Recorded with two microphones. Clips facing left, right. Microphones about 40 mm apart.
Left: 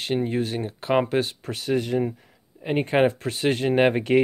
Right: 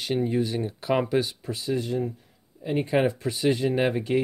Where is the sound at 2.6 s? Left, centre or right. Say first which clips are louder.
Left 3 dB; left.